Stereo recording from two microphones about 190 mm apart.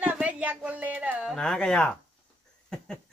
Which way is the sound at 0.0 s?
10° right (ahead or behind).